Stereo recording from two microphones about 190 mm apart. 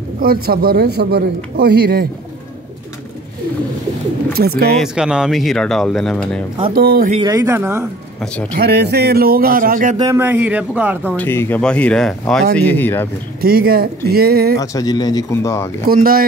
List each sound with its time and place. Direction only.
0.2 s a man's voice: 50° right (ahead or behind)
4.3 s a man's voice: 55° right (ahead or behind)
4.7 s speech: 5° right (ahead or behind)
6.7 s a man's voice: 55° right (ahead or behind)
7.2 s a man's voice: 15° right (ahead or behind)
8.5 s speech: 60° right (ahead or behind)
9.9 s a man's voice: 15° right (ahead or behind)
11.1 s speech: 10° left (ahead or behind)
13.4 s speech: 50° right (ahead or behind)
14.6 s speech: 20° left (ahead or behind)
15.9 s speech: 50° right (ahead or behind)